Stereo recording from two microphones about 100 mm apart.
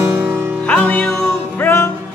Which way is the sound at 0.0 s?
15° right (ahead or behind).